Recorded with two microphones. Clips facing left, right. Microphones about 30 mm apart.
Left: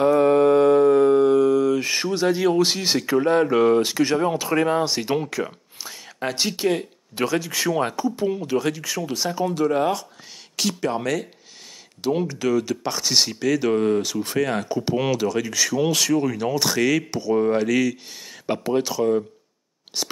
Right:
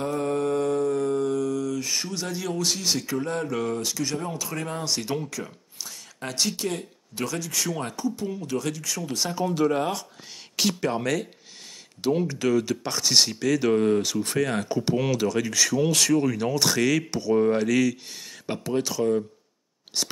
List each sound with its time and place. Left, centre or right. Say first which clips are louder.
0.2 s a sound: left 9 dB; left
5.3 s speech: left 8 dB; left; by 11.2 s centre
12.3 s speech: left 1 dB; centre